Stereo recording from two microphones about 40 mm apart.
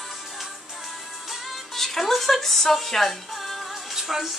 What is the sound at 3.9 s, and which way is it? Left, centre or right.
Music, centre.